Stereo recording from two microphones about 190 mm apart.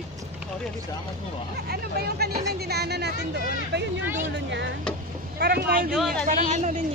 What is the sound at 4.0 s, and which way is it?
Speech, 10° right (ahead or behind).